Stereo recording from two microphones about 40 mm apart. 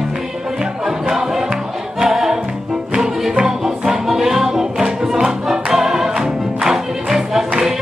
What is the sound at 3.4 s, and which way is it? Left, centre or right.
Music, centre.